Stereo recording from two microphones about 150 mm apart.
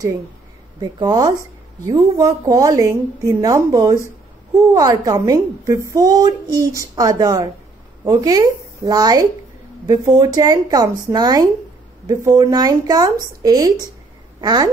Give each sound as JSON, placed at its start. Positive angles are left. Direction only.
{"t": 0.7, "sound": "a woman's voice", "side_deg": -25}